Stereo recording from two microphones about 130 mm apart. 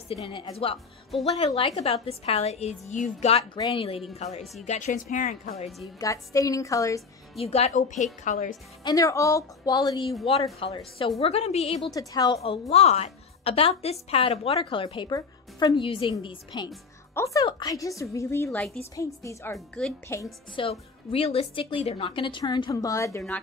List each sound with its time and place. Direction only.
0.1 s a woman's voice: 45° left (ahead or behind)
3.5 s a woman's voice: 30° left (ahead or behind)
4.1 s speech: 55° left (ahead or behind)
4.6 s a woman's voice: 65° left (ahead or behind)
5.1 s speech: 80° left
5.9 s a woman's voice: 25° left (ahead or behind)
7.3 s a woman's voice: 50° left (ahead or behind); by 8.5 s 75° left (ahead or behind)
8.8 s a woman's voice: 25° left (ahead or behind)
10.6 s a woman's voice: 45° left (ahead or behind)
11.8 s a woman's voice: 30° left (ahead or behind)
12.6 s a woman's voice: 55° left (ahead or behind); by 16.7 s 35° left (ahead or behind)
17.1 s a woman's voice: 25° left (ahead or behind)
20.6 s a woman's voice: 40° left (ahead or behind); by 23.2 s 25° left (ahead or behind)